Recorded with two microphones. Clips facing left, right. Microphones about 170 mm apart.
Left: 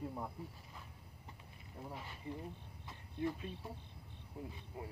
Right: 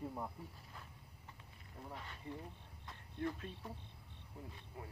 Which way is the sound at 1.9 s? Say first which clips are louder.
Left 2 dB; 5° left (ahead or behind).